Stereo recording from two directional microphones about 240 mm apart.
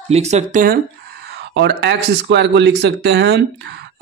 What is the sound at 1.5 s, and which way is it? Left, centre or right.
Speech, right.